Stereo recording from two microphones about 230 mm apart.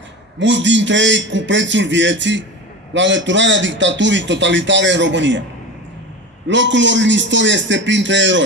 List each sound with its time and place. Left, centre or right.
0.4 s a man's voice: right
6.4 s a man's voice: right